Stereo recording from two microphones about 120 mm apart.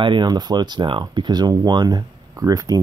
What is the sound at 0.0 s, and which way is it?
Speech, 40° right (ahead or behind).